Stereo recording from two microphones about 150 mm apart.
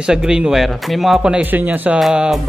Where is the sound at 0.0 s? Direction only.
5° right (ahead or behind).